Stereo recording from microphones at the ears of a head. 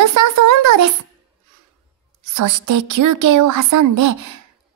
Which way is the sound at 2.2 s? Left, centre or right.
Right.